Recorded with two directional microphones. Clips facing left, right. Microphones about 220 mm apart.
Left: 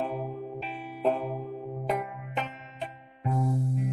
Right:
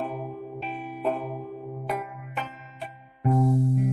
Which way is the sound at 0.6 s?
50° right (ahead or behind).